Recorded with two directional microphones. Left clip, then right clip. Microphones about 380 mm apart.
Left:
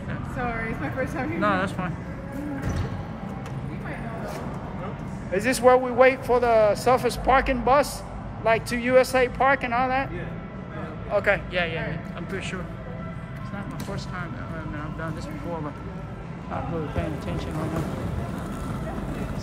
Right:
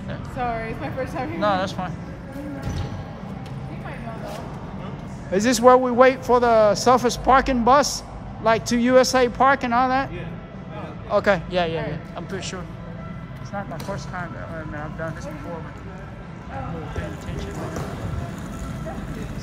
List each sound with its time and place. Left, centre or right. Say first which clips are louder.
1.4 s speech: right 3 dB; centre
5.4 s a man's voice: right 4 dB; centre
11.1 s a man's voice: right 3 dB; centre